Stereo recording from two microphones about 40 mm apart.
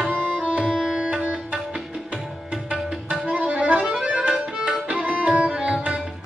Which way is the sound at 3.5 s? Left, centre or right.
Right.